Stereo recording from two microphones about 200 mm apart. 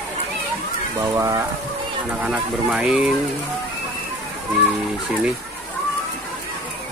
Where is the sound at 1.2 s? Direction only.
15° right (ahead or behind).